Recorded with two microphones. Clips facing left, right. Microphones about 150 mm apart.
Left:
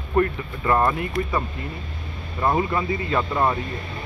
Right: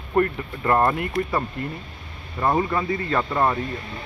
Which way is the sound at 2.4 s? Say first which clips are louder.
Even; 10° left (ahead or behind).